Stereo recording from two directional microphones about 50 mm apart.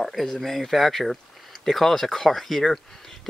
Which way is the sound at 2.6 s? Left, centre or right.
Centre.